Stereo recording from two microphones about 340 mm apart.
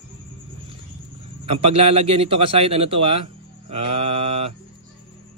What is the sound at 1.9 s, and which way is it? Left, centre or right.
Speech, centre.